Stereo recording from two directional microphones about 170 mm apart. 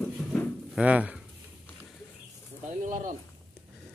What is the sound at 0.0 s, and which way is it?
Drawer open or close, 10° left (ahead or behind).